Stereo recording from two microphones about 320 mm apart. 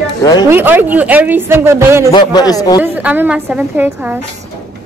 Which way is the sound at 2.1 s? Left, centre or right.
Centre.